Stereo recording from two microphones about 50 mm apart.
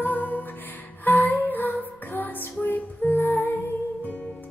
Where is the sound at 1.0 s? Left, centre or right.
Left.